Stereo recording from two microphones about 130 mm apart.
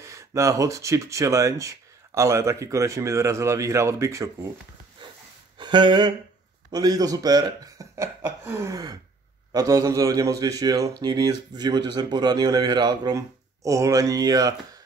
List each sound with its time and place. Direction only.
0.0 s a man's voice: 25° right (ahead or behind)
5.0 s snort: 35° right (ahead or behind)
5.6 s a sound: 35° right (ahead or behind)
6.7 s a man's voice: 30° right (ahead or behind)